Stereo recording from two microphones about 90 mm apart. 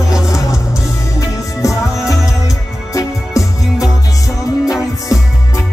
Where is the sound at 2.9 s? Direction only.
40° left (ahead or behind).